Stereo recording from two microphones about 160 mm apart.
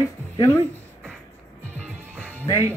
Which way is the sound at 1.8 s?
5° left (ahead or behind).